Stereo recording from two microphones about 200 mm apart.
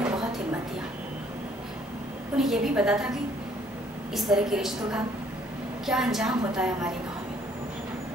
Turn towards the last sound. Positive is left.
turn(degrees=-5)  # may be behind; listen again after turning